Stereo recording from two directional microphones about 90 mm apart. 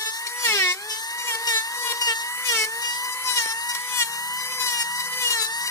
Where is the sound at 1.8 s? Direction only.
35° left (ahead or behind).